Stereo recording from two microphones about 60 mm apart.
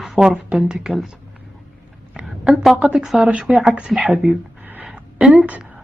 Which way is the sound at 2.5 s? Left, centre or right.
Centre.